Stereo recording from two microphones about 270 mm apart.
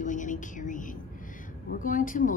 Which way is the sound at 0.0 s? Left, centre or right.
Left.